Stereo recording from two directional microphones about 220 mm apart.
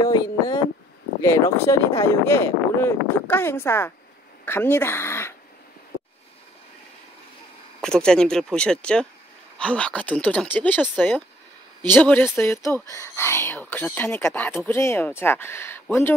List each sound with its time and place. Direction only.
0.0 s speech: 20° left (ahead or behind)
7.8 s speech: 5° left (ahead or behind)